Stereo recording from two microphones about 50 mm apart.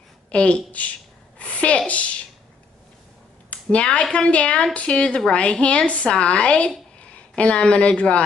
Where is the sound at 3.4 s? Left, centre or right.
Left.